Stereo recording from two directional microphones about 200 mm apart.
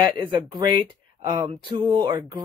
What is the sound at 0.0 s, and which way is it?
Speech, 20° right (ahead or behind).